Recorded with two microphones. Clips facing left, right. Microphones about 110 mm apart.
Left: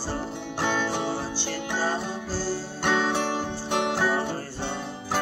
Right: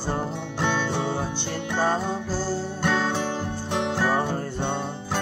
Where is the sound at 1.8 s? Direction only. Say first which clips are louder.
Right 6 dB; 50° right (ahead or behind).